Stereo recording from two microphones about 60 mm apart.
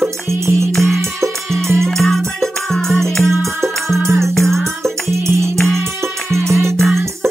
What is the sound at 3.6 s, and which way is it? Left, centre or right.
Music, right.